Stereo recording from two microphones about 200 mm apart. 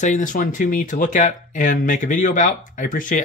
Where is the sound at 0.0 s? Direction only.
40° left (ahead or behind).